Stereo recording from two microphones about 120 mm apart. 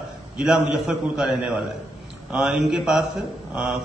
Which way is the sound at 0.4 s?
5° right (ahead or behind).